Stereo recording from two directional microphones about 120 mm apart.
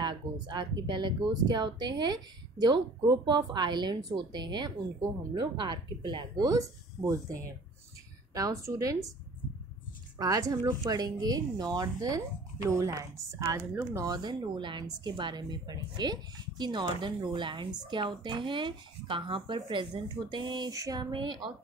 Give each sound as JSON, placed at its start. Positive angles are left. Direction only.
{"t": 0.0, "sound": "speech", "side_deg": -40}
{"t": 10.1, "sound": "speech", "side_deg": -30}
{"t": 14.0, "sound": "speech", "side_deg": -35}